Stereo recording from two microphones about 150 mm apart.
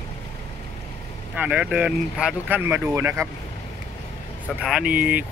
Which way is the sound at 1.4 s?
10° right (ahead or behind).